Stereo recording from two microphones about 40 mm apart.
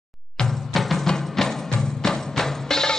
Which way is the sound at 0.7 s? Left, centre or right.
Centre.